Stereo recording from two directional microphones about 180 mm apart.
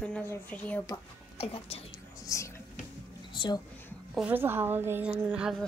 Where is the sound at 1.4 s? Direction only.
35° left (ahead or behind).